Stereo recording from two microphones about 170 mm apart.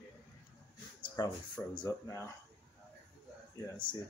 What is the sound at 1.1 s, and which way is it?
Speech, 15° left (ahead or behind).